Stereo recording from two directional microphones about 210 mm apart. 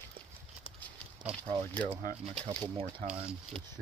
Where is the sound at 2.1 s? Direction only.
15° left (ahead or behind).